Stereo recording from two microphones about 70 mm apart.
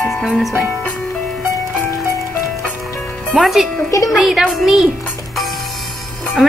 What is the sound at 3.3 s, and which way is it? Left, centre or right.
A woman's voice, centre.